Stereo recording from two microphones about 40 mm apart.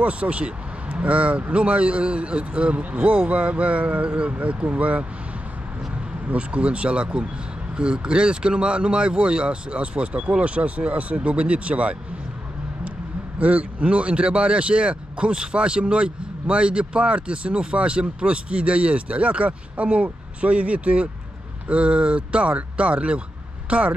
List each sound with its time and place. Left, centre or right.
0.0 s speech: right
6.2 s speech: right
13.4 s speech: right